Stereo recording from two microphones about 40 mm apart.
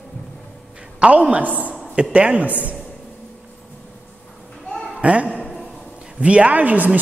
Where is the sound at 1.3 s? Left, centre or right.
Right.